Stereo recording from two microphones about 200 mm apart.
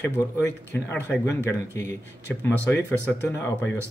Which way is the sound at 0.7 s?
10° left (ahead or behind).